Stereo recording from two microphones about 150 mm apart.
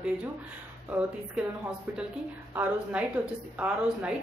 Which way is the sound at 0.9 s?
10° right (ahead or behind).